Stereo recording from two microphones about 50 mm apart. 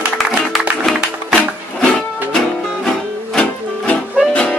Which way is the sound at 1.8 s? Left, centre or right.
Centre.